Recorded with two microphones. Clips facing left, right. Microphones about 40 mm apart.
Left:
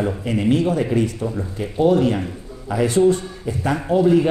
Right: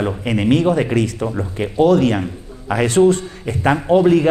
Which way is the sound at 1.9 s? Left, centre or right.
Right.